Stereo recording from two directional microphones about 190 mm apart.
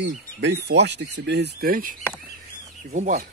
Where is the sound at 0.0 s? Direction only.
65° right (ahead or behind); by 3.3 s 40° right (ahead or behind).